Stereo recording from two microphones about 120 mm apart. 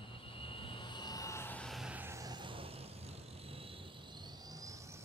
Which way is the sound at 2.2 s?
35° right (ahead or behind).